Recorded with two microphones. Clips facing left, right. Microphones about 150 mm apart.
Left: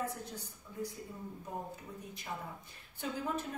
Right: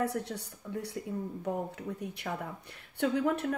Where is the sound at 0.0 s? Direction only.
70° right (ahead or behind).